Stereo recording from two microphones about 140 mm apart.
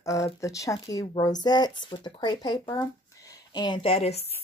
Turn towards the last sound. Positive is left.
turn(degrees=45)  # may be behind; listen again after turning